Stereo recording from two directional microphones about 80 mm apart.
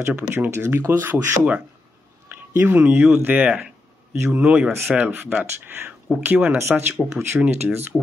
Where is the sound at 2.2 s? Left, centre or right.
Right.